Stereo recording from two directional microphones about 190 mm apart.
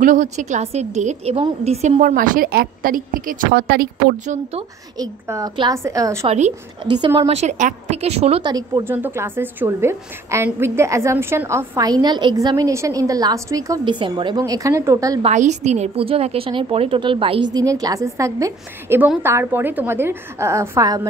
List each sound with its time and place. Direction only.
0.0 s a woman's voice: 40° right (ahead or behind)
4.9 s a woman's voice: 20° right (ahead or behind)
6.2 s a woman's voice: 35° right (ahead or behind)
8.8 s a woman's voice: 10° right (ahead or behind)
15.2 s a woman's voice: 40° right (ahead or behind); by 21.1 s 20° right (ahead or behind)